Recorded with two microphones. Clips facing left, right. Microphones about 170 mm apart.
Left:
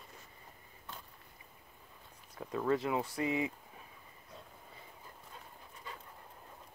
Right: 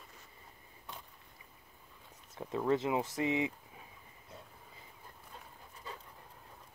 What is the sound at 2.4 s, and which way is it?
Speech, 20° right (ahead or behind).